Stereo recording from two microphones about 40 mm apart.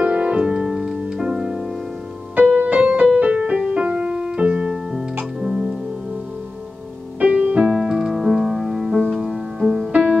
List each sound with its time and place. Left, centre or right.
0.0 s music: right
0.5 s music: centre
1.2 s music: centre
2.3 s music: right
3.9 s piano: centre
5.4 s music: centre
7.2 s music: right
7.7 s music: centre